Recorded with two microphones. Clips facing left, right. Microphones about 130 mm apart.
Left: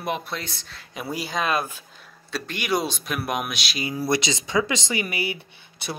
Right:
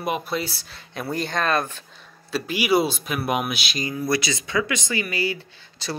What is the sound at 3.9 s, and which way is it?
Speech, 25° left (ahead or behind).